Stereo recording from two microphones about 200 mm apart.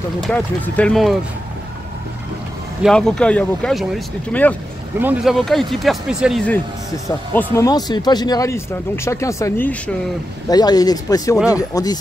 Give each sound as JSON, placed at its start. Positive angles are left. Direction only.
{"t": 0.2, "sound": "speech", "side_deg": 5}
{"t": 2.8, "sound": "speech", "side_deg": 5}
{"t": 7.5, "sound": "speech", "side_deg": 20}